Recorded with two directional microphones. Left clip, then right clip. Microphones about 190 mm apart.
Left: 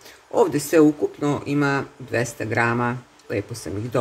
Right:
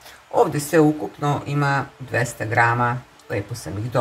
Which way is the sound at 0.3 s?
40° left (ahead or behind).